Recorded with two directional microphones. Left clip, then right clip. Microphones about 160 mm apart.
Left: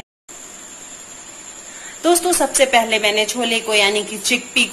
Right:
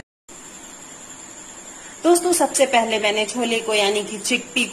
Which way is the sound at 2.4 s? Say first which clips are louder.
Left 5 dB; 10° right (ahead or behind).